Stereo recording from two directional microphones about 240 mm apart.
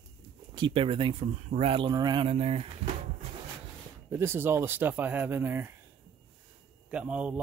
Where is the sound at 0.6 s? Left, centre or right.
Right.